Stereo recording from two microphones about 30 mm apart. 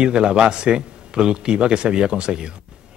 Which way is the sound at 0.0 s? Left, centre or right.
Right.